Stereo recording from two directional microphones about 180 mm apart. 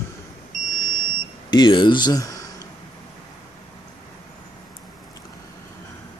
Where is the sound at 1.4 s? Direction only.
25° left (ahead or behind).